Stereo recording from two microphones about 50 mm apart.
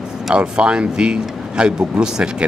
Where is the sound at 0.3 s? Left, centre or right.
Centre.